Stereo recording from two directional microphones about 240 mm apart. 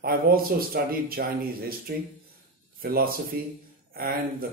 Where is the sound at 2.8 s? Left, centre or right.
Right.